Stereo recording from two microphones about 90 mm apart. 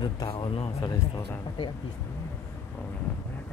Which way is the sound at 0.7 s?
45° left (ahead or behind).